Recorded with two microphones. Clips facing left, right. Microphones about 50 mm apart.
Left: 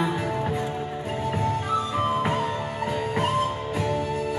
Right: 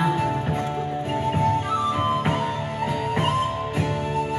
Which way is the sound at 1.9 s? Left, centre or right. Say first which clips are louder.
Right 1 dB; right.